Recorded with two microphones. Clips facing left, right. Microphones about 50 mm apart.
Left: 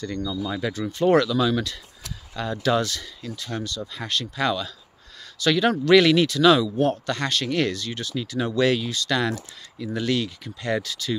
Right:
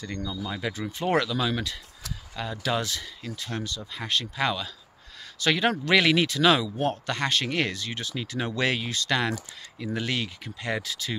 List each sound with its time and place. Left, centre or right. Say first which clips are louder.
0.0 s speech: left 5 dB; centre
2.3 s speech: left 6 dB; centre; by 11.1 s right